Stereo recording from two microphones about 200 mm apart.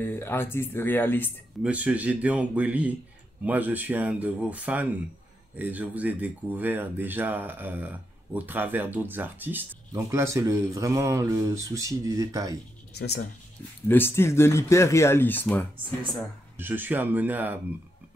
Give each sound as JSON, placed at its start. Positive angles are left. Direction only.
{"t": 0.0, "sound": "speech", "side_deg": 10}
{"t": 1.6, "sound": "speech", "side_deg": -5}
{"t": 12.9, "sound": "speech", "side_deg": 55}
{"t": 13.8, "sound": "speech", "side_deg": 10}
{"t": 16.5, "sound": "speech", "side_deg": -10}